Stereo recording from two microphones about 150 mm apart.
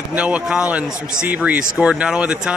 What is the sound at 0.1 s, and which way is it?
Speech, 10° right (ahead or behind).